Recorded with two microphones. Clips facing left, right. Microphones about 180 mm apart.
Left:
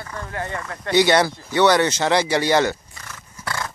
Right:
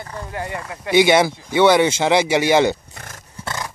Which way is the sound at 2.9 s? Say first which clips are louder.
Right 2 dB; 50° right (ahead or behind).